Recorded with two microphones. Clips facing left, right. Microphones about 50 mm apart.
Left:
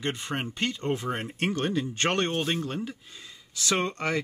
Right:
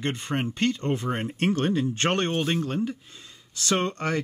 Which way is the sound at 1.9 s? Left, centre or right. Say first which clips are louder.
Right 2 dB; right.